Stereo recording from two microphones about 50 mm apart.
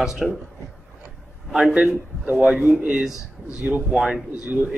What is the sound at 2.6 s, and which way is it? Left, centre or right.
Speech, right.